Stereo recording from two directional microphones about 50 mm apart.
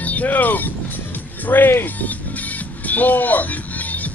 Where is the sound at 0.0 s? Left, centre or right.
Left.